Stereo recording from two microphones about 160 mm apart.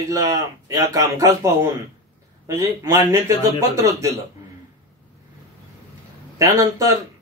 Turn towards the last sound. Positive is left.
turn(degrees=-20)  # may be behind; listen again after turning